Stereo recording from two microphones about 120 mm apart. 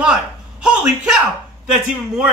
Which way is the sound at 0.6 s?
10° right (ahead or behind).